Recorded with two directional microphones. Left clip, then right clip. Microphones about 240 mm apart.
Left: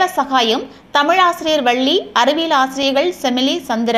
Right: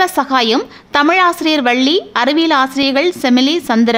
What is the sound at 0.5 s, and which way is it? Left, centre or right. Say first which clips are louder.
Speech: right 2 dB; right.